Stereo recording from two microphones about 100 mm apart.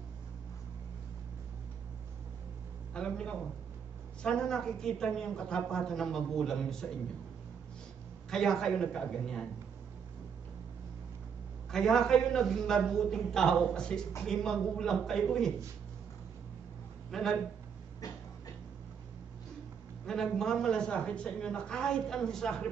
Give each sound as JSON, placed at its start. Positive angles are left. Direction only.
{"t": 2.9, "sound": "a man's voice", "side_deg": 10}
{"t": 8.3, "sound": "a woman's voice", "side_deg": 5}
{"t": 11.7, "sound": "a woman's voice", "side_deg": 5}
{"t": 17.1, "sound": "a woman's voice", "side_deg": 5}
{"t": 18.0, "sound": "a sound", "side_deg": 40}
{"t": 20.1, "sound": "a woman's voice", "side_deg": 5}